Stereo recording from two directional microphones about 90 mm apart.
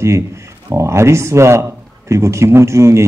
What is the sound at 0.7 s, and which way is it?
A man's voice, 30° right (ahead or behind).